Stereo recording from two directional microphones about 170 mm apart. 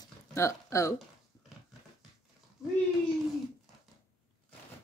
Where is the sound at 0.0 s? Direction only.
20° left (ahead or behind).